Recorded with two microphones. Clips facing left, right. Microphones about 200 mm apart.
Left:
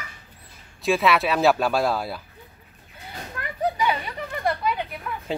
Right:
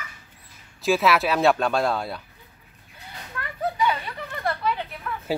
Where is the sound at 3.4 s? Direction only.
15° left (ahead or behind).